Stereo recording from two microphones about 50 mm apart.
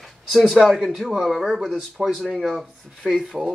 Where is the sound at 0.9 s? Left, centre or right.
Centre.